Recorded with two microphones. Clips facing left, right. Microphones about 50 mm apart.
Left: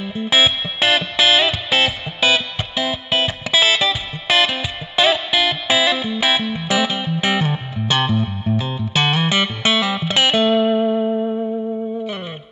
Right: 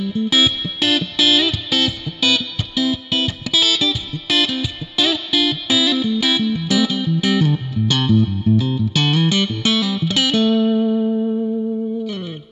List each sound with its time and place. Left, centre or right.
0.0 s music: left